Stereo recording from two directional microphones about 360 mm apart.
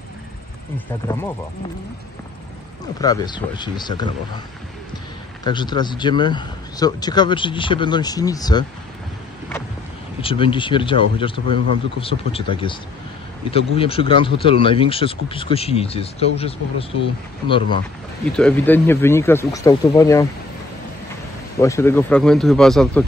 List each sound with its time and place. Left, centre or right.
0.7 s speech: centre
3.0 s speech: centre
5.4 s speech: centre
10.2 s speech: centre
17.5 s speech: centre
21.5 s speech: centre